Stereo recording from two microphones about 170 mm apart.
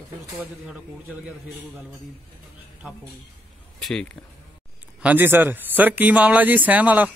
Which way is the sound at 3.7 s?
Centre (ahead or behind).